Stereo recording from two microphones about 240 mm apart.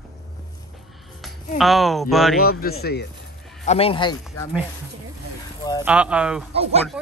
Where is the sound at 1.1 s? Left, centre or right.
Centre.